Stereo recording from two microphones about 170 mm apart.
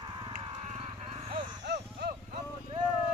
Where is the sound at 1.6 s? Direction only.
75° right (ahead or behind).